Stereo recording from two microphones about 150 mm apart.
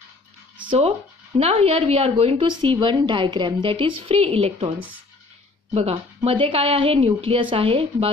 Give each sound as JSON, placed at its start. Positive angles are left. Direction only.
{"t": 0.7, "sound": "a woman's voice", "side_deg": -40}